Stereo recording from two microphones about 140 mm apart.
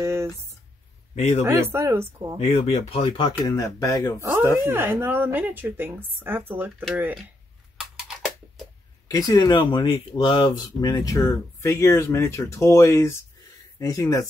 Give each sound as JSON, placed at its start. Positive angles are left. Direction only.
{"t": 0.0, "sound": "speech", "side_deg": -20}
{"t": 1.1, "sound": "speech", "side_deg": 50}
{"t": 1.4, "sound": "a woman's voice", "side_deg": -15}
{"t": 2.4, "sound": "speech", "side_deg": 50}
{"t": 4.2, "sound": "a woman's voice", "side_deg": -15}
{"t": 7.7, "sound": "a sound", "side_deg": -5}
{"t": 9.1, "sound": "speech", "side_deg": 25}